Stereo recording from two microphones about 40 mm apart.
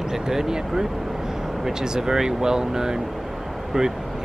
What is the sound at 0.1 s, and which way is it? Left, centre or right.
Speech, centre.